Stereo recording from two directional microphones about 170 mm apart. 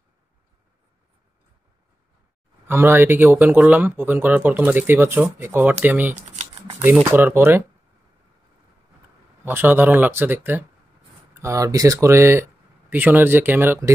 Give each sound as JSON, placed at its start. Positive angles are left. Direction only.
{"t": 2.7, "sound": "speech", "side_deg": -15}
{"t": 9.4, "sound": "speech", "side_deg": -10}